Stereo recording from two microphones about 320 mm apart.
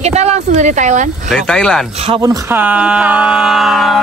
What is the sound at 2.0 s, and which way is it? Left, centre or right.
A capella, centre.